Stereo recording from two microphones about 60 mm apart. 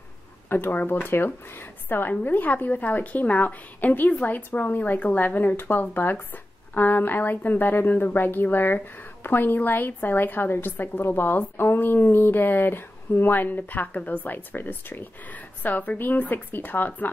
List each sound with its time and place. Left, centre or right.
0.5 s a woman's voice: left